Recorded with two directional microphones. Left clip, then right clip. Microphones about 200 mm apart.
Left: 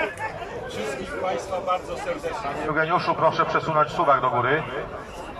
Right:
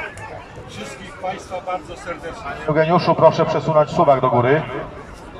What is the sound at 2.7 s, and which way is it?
A man's voice, 30° right (ahead or behind).